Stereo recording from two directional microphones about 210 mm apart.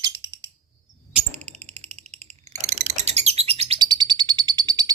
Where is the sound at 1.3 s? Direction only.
30° right (ahead or behind).